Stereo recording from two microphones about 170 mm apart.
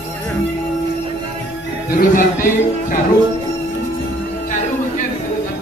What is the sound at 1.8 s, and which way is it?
Speech, 55° left (ahead or behind).